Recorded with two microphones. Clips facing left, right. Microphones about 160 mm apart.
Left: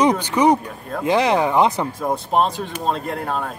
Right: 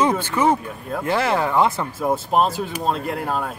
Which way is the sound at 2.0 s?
5° right (ahead or behind).